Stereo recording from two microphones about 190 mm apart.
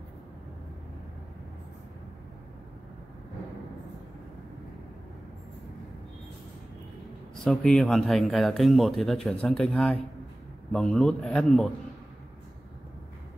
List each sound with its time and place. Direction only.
7.4 s speech: 5° left (ahead or behind)